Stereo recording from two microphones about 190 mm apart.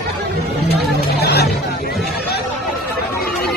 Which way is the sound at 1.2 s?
60° left (ahead or behind).